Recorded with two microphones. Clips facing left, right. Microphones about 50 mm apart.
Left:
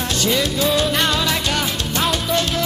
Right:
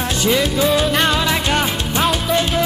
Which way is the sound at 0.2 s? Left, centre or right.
Centre.